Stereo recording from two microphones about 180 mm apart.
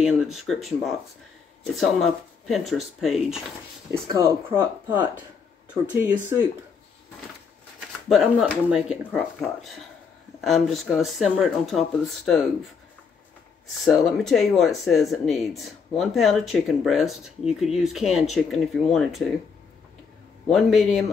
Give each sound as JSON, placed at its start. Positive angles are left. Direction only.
{"t": 0.0, "sound": "speech", "side_deg": 0}
{"t": 3.9, "sound": "speech", "side_deg": -15}
{"t": 8.1, "sound": "speech", "side_deg": 0}
{"t": 13.8, "sound": "speech", "side_deg": 0}
{"t": 20.5, "sound": "speech", "side_deg": 0}